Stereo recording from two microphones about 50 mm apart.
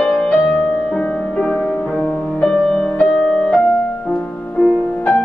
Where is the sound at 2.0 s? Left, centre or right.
Centre.